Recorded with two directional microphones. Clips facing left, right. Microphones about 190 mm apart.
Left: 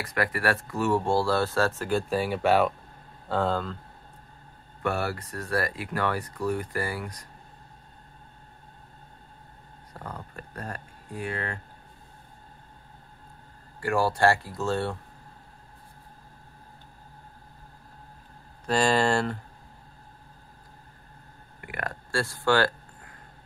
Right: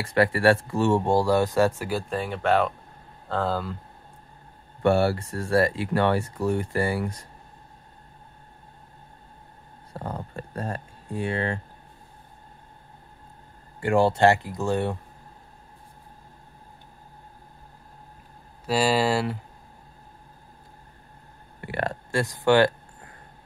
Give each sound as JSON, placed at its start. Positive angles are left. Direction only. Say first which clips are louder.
{"t": 0.0, "sound": "speech", "louder": "right 7 dB", "side_deg": -30}
{"t": 4.8, "sound": "speech", "louder": "right 8 dB", "side_deg": -30}
{"t": 9.9, "sound": "speech", "louder": "right 6 dB", "side_deg": -30}
{"t": 13.7, "sound": "speech", "louder": "right 4 dB", "side_deg": -25}
{"t": 18.7, "sound": "speech", "louder": "right 1 dB", "side_deg": -5}
{"t": 21.5, "sound": "speech", "louder": "right 6 dB", "side_deg": -30}
{"t": 22.1, "sound": "speech", "louder": "right 4 dB", "side_deg": -20}